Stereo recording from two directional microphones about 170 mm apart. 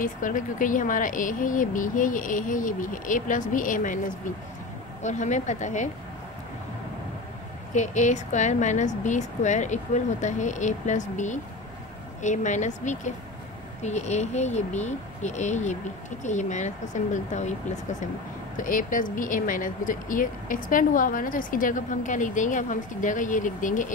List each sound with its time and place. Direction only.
0.0 s speech: 50° left (ahead or behind)
5.0 s speech: 45° left (ahead or behind)
7.7 s speech: 45° left (ahead or behind)